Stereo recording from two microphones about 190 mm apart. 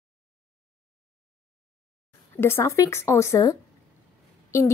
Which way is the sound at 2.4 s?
15° left (ahead or behind).